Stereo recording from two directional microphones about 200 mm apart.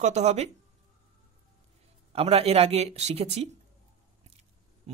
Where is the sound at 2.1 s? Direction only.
30° right (ahead or behind).